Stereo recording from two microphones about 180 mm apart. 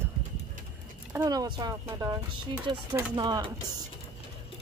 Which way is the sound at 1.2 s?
20° right (ahead or behind).